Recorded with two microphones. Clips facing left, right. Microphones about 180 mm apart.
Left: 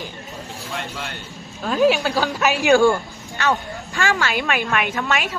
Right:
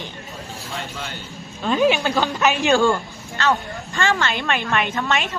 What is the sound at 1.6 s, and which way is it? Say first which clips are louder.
Speech: left 1 dB; centre (ahead or behind).